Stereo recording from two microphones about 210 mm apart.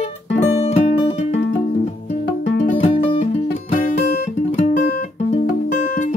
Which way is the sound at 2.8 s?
25° left (ahead or behind).